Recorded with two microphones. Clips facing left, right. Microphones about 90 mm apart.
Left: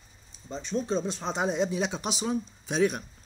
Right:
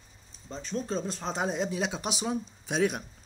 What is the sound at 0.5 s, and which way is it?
Speech, centre (ahead or behind).